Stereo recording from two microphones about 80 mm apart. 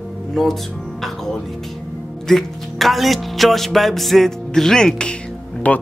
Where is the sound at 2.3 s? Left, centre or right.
Centre.